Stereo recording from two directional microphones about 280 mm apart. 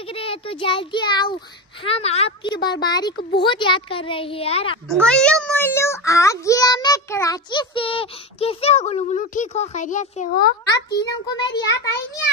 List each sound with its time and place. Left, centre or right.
0.1 s a child's voice: centre
3.2 s speech: left
3.4 s a woman's voice: centre
5.0 s a child's voice: centre; by 10.5 s left
10.9 s a child's voice: centre